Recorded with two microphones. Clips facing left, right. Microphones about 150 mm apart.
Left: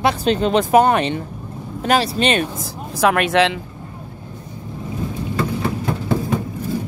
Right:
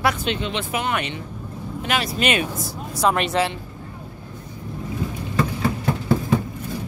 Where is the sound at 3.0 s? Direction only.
60° left (ahead or behind).